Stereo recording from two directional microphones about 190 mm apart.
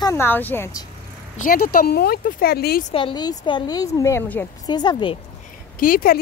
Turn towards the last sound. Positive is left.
turn(degrees=50)  # may be behind; listen again after turning